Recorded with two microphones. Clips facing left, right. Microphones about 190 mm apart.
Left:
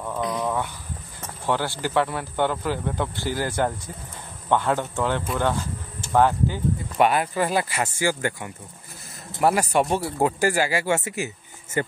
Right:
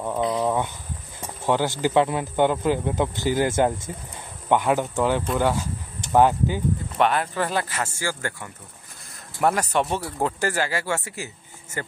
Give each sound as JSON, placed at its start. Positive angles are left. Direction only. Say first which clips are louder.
{"t": 0.0, "sound": "a sound", "louder": "right 3 dB", "side_deg": -25}
{"t": 1.2, "sound": "speech", "louder": "right 3 dB", "side_deg": -15}
{"t": 7.0, "sound": "speech", "louder": "left 2 dB", "side_deg": 10}